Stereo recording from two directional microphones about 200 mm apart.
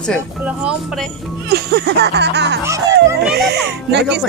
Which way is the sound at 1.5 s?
55° right (ahead or behind).